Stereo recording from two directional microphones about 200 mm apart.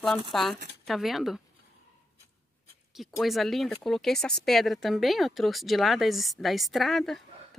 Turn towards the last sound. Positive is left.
turn(degrees=0)  # may be behind; listen again after turning